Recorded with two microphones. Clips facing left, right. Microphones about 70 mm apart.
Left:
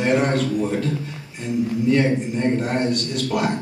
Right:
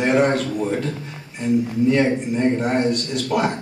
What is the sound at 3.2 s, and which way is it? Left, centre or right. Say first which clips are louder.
Speech: right 2 dB; right.